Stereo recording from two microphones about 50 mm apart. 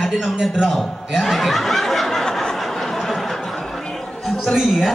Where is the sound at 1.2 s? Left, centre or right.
Centre.